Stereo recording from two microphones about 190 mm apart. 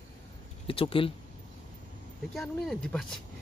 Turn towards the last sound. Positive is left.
turn(degrees=5)  # may be behind; listen again after turning